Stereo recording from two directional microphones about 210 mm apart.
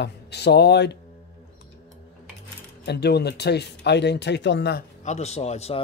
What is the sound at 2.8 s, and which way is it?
Speech, 50° left (ahead or behind).